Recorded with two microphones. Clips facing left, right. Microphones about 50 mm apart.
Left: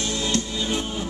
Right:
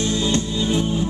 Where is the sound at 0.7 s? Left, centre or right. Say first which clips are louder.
Right 7 dB; right.